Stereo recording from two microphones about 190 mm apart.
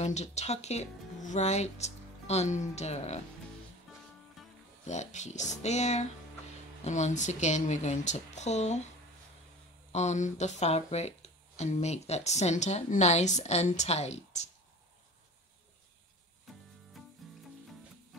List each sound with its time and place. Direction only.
0.0 s speech: 35° left (ahead or behind)
4.4 s music: centre (ahead or behind)
4.8 s speech: 40° left (ahead or behind)
9.9 s speech: 40° left (ahead or behind)
17.0 s music: centre (ahead or behind)